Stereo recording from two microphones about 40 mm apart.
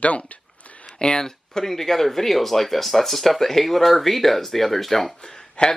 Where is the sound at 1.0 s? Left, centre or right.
Centre.